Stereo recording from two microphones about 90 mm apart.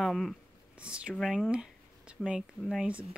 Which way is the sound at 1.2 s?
5° left (ahead or behind).